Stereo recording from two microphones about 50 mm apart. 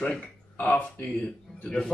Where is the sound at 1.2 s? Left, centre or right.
Centre.